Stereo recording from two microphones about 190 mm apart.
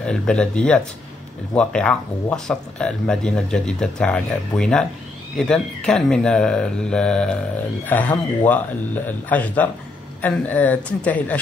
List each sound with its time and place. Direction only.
0.0 s speech: 5° left (ahead or behind)